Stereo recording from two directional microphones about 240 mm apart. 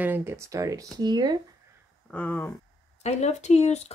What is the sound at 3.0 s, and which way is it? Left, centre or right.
Speech, left.